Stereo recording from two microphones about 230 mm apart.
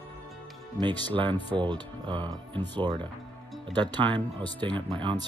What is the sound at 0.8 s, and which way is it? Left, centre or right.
Speech, centre.